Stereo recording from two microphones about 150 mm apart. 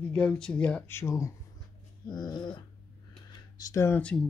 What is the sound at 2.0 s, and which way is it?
Dog, 30° left (ahead or behind).